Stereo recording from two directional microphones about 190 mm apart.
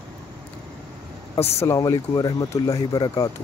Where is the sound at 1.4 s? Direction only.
35° left (ahead or behind).